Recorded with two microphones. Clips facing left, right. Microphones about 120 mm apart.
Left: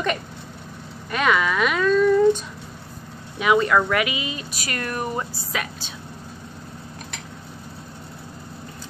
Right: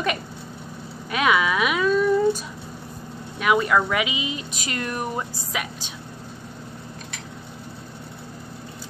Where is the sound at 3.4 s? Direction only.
5° right (ahead or behind).